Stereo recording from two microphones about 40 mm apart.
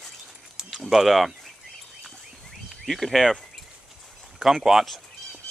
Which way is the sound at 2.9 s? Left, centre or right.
Centre.